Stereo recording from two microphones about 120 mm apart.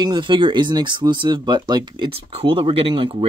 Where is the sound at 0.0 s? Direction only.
40° right (ahead or behind).